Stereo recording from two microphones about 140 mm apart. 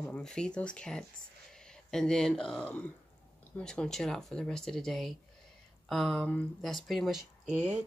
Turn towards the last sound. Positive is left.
turn(degrees=-55)  # may be behind; listen again after turning